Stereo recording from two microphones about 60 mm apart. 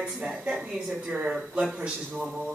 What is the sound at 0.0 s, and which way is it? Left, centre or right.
Speech, centre.